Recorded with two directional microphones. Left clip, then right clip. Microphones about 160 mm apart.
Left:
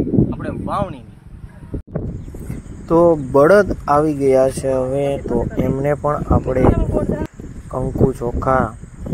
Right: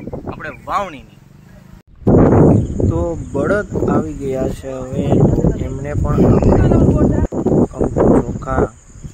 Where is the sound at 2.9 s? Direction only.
35° left (ahead or behind).